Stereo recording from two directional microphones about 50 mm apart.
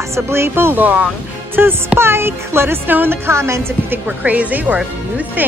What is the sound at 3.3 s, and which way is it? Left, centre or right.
Speech, right.